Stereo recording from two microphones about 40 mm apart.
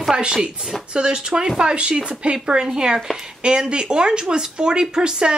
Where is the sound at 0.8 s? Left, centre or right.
Right.